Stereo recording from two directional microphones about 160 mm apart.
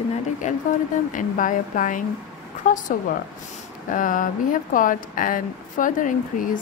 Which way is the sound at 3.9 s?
55° left (ahead or behind).